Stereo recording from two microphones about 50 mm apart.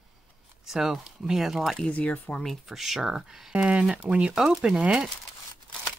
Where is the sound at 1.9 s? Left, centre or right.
Left.